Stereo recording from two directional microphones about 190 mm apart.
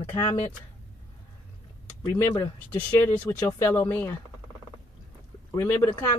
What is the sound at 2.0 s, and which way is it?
Speech, 15° left (ahead or behind).